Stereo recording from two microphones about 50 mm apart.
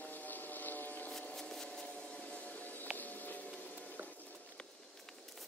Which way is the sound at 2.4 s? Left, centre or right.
Left.